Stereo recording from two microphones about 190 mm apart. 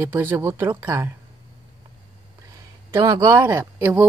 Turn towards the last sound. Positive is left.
turn(degrees=-10)  # may be behind; listen again after turning